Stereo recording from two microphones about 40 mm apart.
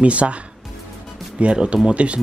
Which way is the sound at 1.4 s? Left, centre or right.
Right.